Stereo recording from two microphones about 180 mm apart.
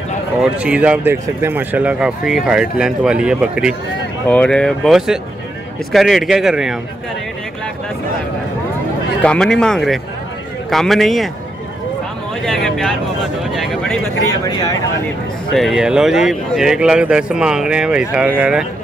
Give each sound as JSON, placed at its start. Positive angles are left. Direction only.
{"t": 0.4, "sound": "speech", "side_deg": -5}
{"t": 4.3, "sound": "speech", "side_deg": 5}
{"t": 9.2, "sound": "speech", "side_deg": 5}
{"t": 12.4, "sound": "speech", "side_deg": 5}
{"t": 14.4, "sound": "speech", "side_deg": 20}
{"t": 15.5, "sound": "speech", "side_deg": 0}